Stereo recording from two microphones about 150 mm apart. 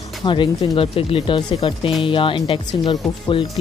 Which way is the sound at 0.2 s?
30° left (ahead or behind).